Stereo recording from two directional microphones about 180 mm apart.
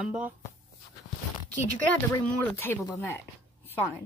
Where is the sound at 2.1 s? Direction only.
15° left (ahead or behind).